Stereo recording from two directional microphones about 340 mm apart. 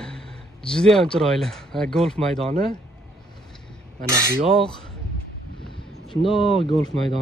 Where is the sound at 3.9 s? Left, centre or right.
Right.